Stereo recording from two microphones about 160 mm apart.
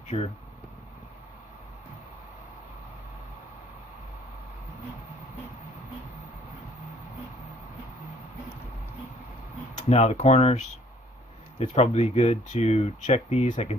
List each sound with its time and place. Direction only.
0.1 s speech: 35° left (ahead or behind)
9.8 s speech: 40° left (ahead or behind)